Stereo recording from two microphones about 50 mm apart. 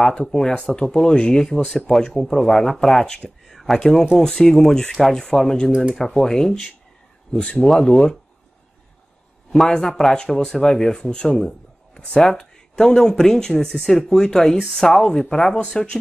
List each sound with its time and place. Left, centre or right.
0.0 s speech: centre
3.5 s a sound: centre
4.2 s speech: centre
9.9 s speech: centre